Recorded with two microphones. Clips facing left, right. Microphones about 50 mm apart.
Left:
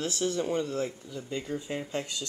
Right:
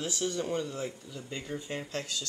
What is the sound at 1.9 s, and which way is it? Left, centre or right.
Speech, left.